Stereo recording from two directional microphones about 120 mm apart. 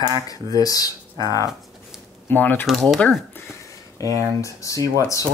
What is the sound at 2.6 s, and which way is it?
Speech, centre (ahead or behind).